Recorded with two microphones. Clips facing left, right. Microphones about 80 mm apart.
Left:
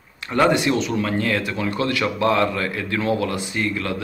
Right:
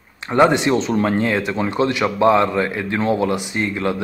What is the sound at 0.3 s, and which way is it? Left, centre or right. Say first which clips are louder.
Speech: right 3 dB; right.